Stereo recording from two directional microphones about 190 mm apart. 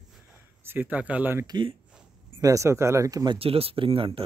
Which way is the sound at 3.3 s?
30° right (ahead or behind).